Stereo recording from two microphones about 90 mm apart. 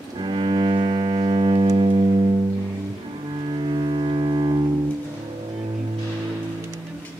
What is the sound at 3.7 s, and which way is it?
Music, 65° right (ahead or behind).